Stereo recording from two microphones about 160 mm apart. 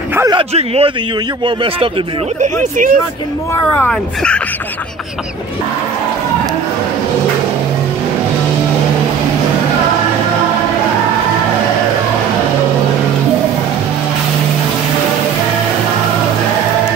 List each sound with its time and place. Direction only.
0.3 s speech: 35° right (ahead or behind)
2.4 s speech: 55° right (ahead or behind)
3.7 s speech: 10° left (ahead or behind)